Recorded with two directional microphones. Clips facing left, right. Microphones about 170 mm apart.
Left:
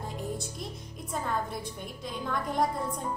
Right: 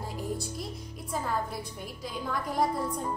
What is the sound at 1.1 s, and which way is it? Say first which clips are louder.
A woman's voice: even; 5° right (ahead or behind).